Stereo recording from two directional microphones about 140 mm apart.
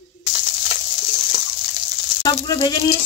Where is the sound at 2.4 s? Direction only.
30° left (ahead or behind).